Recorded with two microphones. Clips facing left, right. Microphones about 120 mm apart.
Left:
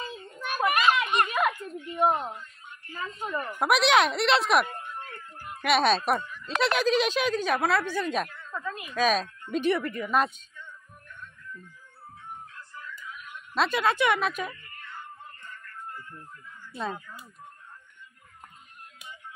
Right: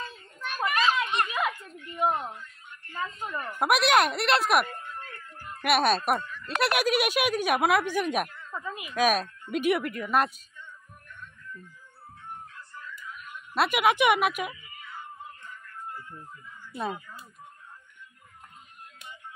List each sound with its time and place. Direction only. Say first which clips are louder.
0.7 s a sound: left 2 dB; 60° left (ahead or behind)
2.0 s a woman's voice: left 2 dB; 40° left (ahead or behind)
3.5 s speech: even; 5° right (ahead or behind)
5.1 s music: left 1 dB; 15° left (ahead or behind)
5.6 s speech: left 1 dB; 5° right (ahead or behind)
6.1 s speech: left 1 dB; 15° left (ahead or behind)
6.4 s speech: left 1 dB; 10° right (ahead or behind)
12.5 s music: left 1 dB; centre (ahead or behind)
16.7 s speech: right 1 dB; 15° right (ahead or behind)